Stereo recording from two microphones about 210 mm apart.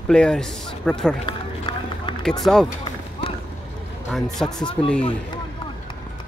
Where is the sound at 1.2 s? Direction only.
25° left (ahead or behind).